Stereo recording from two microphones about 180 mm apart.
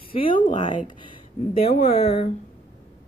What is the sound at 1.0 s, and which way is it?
A woman's voice, 30° left (ahead or behind).